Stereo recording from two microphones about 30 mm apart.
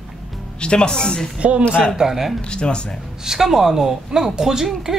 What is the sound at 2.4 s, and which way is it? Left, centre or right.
Speech, left.